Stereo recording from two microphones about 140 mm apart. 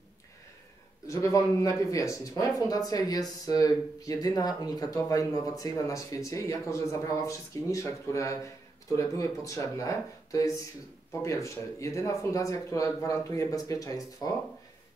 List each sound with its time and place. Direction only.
1.0 s speech: 20° left (ahead or behind)